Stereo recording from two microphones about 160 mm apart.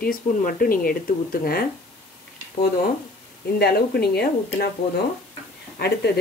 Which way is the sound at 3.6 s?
80° left.